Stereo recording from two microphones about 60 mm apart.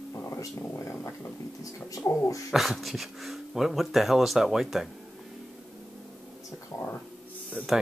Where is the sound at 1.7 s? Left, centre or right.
Left.